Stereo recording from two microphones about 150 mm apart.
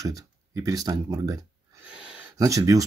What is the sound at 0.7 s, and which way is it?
Speech, 25° right (ahead or behind).